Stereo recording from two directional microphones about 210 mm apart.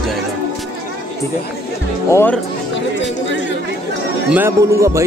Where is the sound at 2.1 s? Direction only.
10° left (ahead or behind).